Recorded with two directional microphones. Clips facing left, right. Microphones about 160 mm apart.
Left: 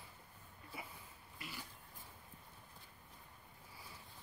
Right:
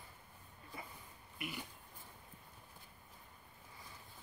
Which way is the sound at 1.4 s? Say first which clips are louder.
Right 6 dB; 20° right (ahead or behind).